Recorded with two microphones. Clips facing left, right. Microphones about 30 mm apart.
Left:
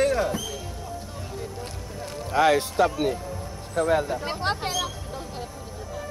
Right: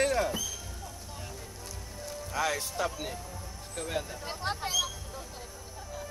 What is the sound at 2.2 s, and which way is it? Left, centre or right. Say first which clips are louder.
Speech: left 11 dB; left.